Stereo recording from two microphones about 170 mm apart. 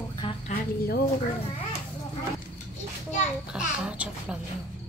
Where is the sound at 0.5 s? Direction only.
65° left (ahead or behind).